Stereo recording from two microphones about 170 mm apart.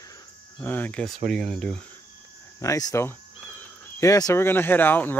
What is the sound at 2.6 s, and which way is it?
Speech, 20° left (ahead or behind).